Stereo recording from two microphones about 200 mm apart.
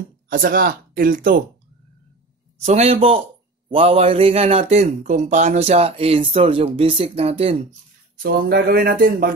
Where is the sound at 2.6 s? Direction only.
35° right (ahead or behind).